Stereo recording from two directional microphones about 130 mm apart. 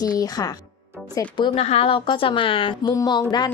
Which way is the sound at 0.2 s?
30° left (ahead or behind).